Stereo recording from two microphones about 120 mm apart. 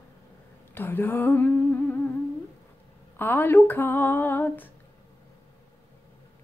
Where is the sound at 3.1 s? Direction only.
15° left (ahead or behind).